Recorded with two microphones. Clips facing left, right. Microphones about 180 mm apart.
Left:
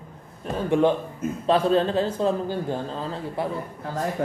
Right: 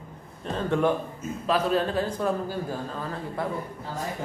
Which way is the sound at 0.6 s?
15° left (ahead or behind).